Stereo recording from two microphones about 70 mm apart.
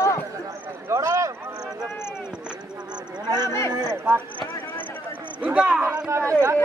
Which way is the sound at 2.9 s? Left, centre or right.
Right.